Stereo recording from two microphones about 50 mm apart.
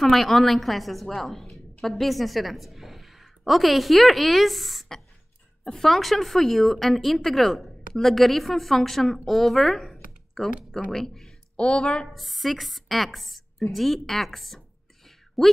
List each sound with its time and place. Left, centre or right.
0.0 s a woman's voice: centre
11.5 s speech: left
12.1 s speech: centre
15.0 s a sound: centre